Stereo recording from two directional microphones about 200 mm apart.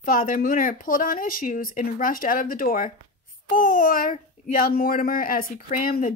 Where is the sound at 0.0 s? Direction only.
45° left (ahead or behind).